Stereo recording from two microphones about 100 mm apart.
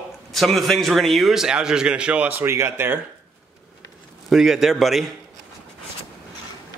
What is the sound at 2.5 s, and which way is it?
Speech, 25° right (ahead or behind).